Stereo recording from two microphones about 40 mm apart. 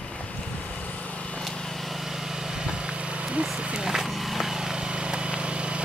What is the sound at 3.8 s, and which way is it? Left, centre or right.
Vehicle, centre.